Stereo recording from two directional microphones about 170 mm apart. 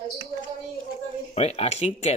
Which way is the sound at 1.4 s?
40° left (ahead or behind).